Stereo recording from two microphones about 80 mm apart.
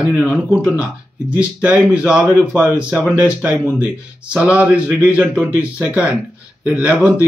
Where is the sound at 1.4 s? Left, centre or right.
Centre.